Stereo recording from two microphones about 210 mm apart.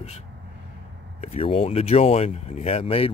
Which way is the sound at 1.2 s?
30° left (ahead or behind).